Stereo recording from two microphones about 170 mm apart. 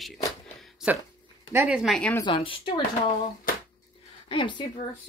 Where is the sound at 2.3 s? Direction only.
30° left (ahead or behind).